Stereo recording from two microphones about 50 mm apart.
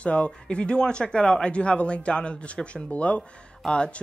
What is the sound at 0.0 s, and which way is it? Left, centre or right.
Speech, left.